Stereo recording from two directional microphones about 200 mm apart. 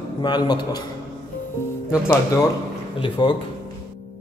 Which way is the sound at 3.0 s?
25° left (ahead or behind).